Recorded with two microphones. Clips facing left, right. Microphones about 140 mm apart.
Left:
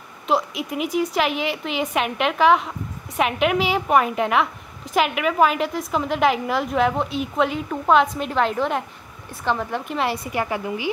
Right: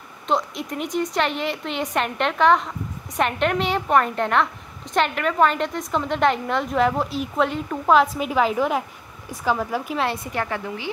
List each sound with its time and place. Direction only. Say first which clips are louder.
0.3 s a woman's voice: left 2 dB; 5° left (ahead or behind)